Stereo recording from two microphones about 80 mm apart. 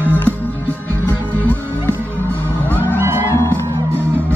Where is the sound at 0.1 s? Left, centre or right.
Left.